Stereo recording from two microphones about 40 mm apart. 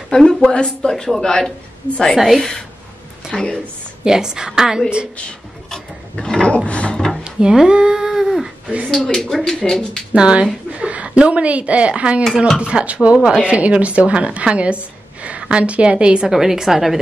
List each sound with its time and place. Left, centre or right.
0.1 s speech: centre
2.1 s a woman's voice: centre
3.3 s speech: centre
4.0 s a woman's voice: centre
5.7 s roaring cats: centre
6.4 s a sound: left
7.3 s a sound: centre
8.9 s speech: centre
10.1 s a woman's voice: right
12.8 s a woman's voice: right
16.3 s a woman's voice: centre